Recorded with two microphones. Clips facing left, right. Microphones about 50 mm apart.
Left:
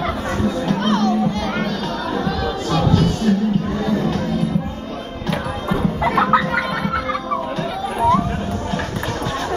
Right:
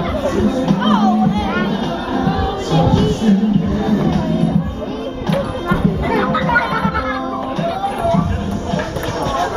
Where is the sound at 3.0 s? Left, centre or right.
Right.